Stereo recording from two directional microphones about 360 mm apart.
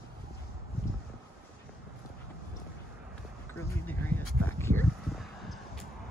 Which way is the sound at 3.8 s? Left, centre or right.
Centre.